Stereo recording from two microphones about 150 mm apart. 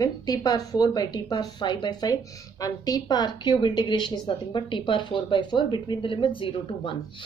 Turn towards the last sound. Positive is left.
turn(degrees=35)  # may be behind; listen again after turning